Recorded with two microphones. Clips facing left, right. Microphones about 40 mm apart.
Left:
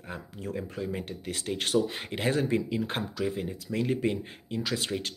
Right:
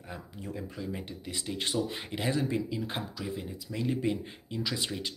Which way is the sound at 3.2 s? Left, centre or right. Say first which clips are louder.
Left 5 dB; left.